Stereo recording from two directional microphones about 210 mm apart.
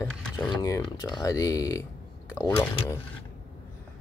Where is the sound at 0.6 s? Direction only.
15° left (ahead or behind).